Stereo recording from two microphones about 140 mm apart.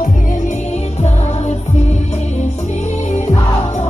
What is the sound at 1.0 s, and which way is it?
Music, 55° left (ahead or behind).